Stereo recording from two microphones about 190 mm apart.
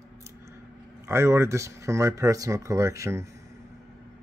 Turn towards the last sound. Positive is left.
turn(degrees=-15)  # may be behind; listen again after turning